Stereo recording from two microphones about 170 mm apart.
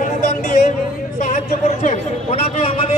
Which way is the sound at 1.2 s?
45° left (ahead or behind).